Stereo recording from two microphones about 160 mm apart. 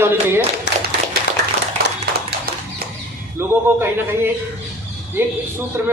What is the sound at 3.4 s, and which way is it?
Speech, 15° right (ahead or behind).